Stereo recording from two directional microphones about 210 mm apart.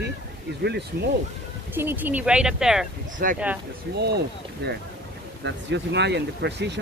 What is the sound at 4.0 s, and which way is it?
Speech, 50° right (ahead or behind).